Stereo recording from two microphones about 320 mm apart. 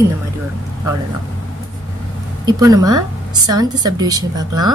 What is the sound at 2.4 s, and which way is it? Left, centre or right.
A woman's voice, centre.